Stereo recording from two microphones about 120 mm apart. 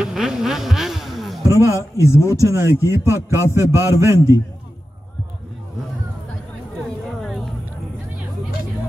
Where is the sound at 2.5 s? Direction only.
20° right (ahead or behind).